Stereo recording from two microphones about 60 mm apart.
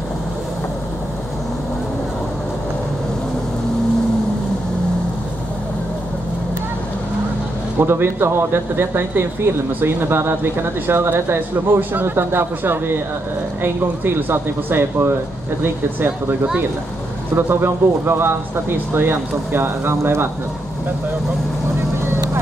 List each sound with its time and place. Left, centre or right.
7.8 s speech: right
17.4 s speech: right